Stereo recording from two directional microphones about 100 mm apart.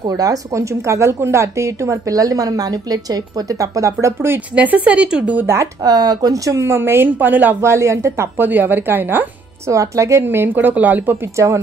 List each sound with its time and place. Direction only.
0.0 s a woman's voice: 35° right (ahead or behind)
4.6 s a woman's voice: 15° right (ahead or behind)
5.8 s speech: 40° right (ahead or behind); by 9.3 s 20° right (ahead or behind)
9.7 s speech: 30° right (ahead or behind)
11.3 s speech: 30° right (ahead or behind)